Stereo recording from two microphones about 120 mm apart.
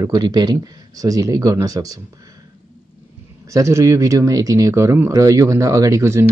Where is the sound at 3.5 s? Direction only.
25° right (ahead or behind).